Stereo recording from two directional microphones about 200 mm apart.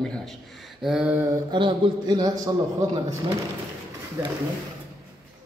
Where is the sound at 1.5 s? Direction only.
25° right (ahead or behind).